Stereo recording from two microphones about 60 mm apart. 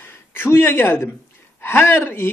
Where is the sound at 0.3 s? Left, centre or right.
Left.